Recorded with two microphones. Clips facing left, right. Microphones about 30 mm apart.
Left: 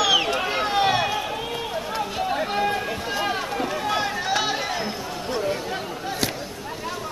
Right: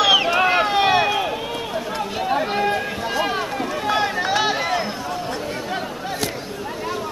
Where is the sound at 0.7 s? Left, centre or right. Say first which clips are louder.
Right 4 dB; centre.